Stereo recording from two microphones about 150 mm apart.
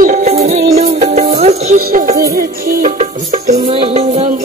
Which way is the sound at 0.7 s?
45° right (ahead or behind).